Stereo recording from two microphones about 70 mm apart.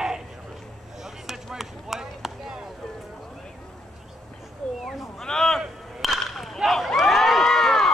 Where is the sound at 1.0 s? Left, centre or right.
Centre.